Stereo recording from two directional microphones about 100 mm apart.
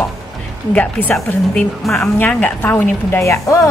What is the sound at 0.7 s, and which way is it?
A woman's voice, 15° left (ahead or behind).